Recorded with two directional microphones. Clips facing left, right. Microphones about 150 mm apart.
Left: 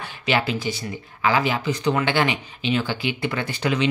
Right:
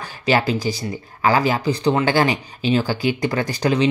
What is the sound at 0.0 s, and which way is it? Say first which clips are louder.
Speech: right 4 dB; 40° right (ahead or behind).